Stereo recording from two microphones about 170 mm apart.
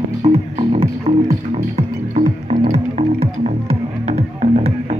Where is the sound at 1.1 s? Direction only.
35° right (ahead or behind).